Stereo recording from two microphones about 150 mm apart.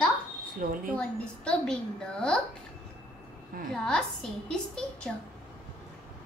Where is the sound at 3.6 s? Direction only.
70° right (ahead or behind).